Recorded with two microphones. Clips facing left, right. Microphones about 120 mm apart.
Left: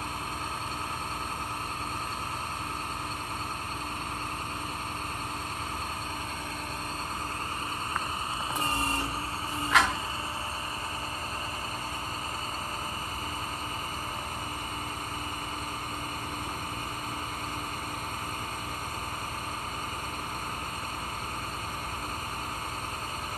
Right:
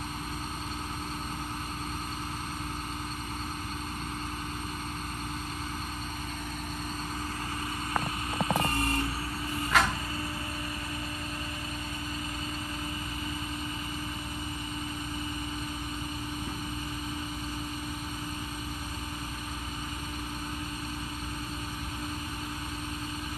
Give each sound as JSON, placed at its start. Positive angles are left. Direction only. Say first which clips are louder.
{"t": 8.6, "sound": "vehicle", "louder": "right 1 dB", "side_deg": 25}
{"t": 9.7, "sound": "cupboard open or close", "louder": "left 1 dB", "side_deg": 0}